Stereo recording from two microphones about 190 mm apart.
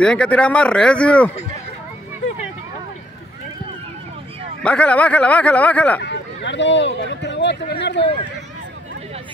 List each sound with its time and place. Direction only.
0.0 s speech: 5° left (ahead or behind)
4.6 s speech: 5° left (ahead or behind)
6.4 s speech: 70° left (ahead or behind)